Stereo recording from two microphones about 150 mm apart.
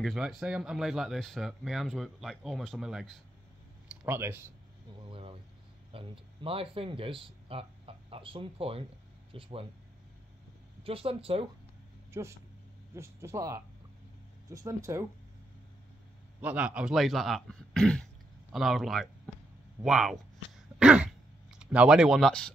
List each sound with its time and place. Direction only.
0.0 s speech: centre (ahead or behind)
4.0 s speech: 15° right (ahead or behind)
5.9 s speech: 35° right (ahead or behind)
10.8 s speech: 40° right (ahead or behind)
12.1 s speech: 20° right (ahead or behind)
16.3 s speech: 10° right (ahead or behind)
20.8 s throat clearing: 5° right (ahead or behind)